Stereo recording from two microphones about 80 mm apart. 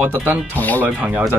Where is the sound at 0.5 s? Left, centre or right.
Centre.